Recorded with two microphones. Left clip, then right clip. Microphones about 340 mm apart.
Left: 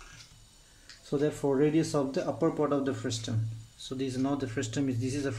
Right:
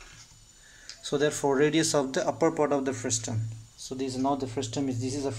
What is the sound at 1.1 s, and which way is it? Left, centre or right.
Speech, right.